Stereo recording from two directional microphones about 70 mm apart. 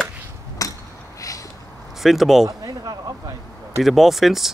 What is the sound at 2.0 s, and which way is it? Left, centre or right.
Speech, centre.